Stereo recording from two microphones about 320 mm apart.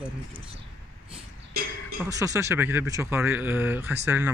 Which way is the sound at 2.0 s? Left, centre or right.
Centre.